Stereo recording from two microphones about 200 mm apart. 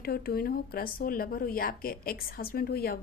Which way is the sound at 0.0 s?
50° left (ahead or behind).